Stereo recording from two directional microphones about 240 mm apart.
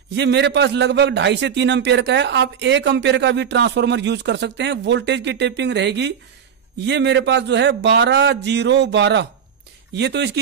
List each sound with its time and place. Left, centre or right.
0.1 s a man's voice: right